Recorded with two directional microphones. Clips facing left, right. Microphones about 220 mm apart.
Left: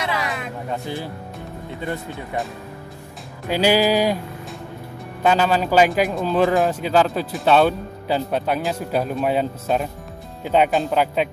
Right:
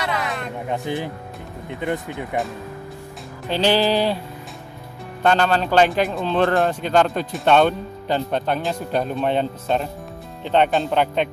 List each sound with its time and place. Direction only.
0.0 s a sound: centre (ahead or behind)
0.7 s speech: 15° right (ahead or behind)
3.4 s music: 10° left (ahead or behind)
5.2 s a man's voice: 5° left (ahead or behind)